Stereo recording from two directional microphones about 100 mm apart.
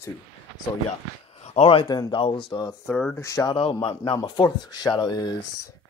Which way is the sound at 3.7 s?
55° left (ahead or behind).